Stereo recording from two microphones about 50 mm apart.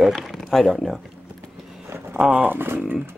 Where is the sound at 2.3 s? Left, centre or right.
Right.